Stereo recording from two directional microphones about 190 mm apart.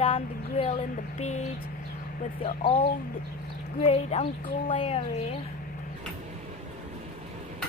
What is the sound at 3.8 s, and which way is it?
A woman's voice, 35° left (ahead or behind).